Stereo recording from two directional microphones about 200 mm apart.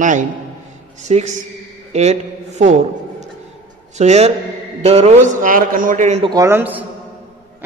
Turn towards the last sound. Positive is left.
turn(degrees=-10)  # may be behind; listen again after turning